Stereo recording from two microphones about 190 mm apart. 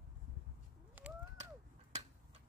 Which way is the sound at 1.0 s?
10° right (ahead or behind).